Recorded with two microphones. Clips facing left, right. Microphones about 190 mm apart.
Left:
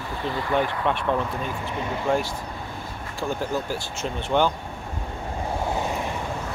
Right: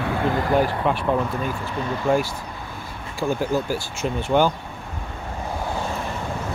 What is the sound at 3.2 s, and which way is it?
Speech, 10° right (ahead or behind).